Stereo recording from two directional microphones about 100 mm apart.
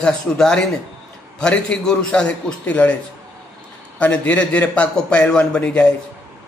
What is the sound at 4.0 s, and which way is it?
A man's voice, 10° left (ahead or behind).